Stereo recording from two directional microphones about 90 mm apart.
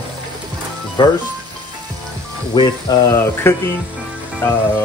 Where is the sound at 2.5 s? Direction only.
55° left (ahead or behind).